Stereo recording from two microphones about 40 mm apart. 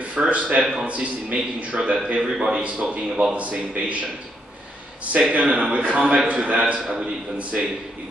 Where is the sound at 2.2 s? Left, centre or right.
Centre.